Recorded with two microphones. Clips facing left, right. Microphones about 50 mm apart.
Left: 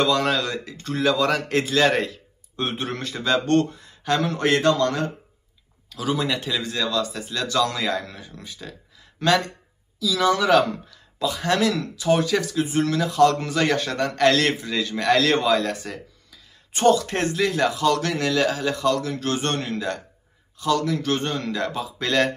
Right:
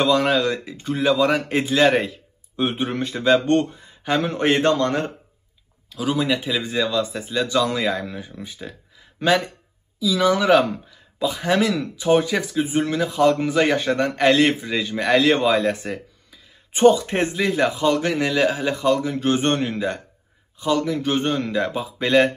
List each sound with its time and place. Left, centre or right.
0.0 s speech: centre; by 5.1 s right
5.9 s speech: centre
6.6 s speech: centre